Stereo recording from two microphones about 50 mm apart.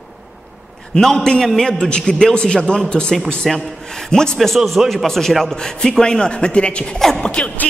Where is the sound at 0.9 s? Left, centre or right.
Centre.